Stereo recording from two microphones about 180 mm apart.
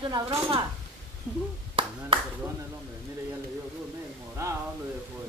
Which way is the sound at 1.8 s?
30° right (ahead or behind).